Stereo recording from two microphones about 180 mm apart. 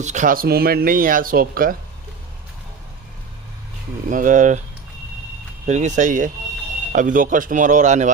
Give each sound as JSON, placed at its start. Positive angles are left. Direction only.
{"t": 0.0, "sound": "speech", "side_deg": -45}
{"t": 4.1, "sound": "speech", "side_deg": -45}
{"t": 5.7, "sound": "speech", "side_deg": -40}